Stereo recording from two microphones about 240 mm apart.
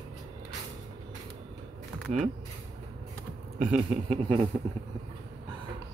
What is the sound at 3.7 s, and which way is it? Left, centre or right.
Speech, right.